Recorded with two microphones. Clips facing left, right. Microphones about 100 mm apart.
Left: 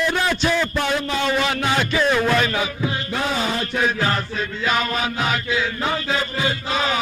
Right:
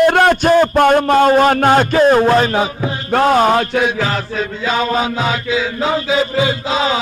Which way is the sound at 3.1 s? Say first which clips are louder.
Right 15 dB; 55° right (ahead or behind).